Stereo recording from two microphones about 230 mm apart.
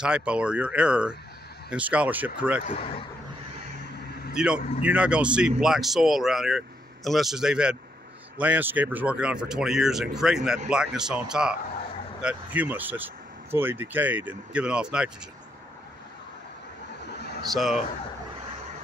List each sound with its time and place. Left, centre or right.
0.0 s speech: centre
2.6 s speech: left
4.4 s speech: centre
17.5 s speech: centre